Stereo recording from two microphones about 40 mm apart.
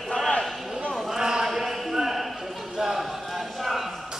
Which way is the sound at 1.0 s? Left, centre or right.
Centre.